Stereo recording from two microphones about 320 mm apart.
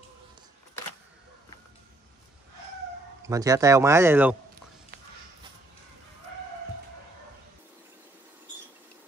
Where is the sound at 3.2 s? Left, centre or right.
Centre.